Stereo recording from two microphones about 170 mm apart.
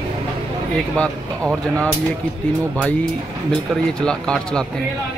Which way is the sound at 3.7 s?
Centre (ahead or behind).